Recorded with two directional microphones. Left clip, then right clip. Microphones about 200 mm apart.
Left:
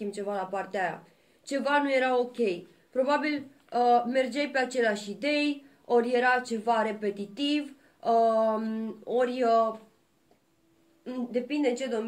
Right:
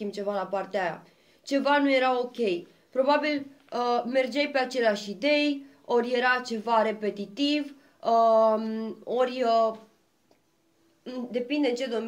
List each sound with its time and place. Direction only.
0.0 s speech: 30° right (ahead or behind)
11.1 s speech: 45° right (ahead or behind)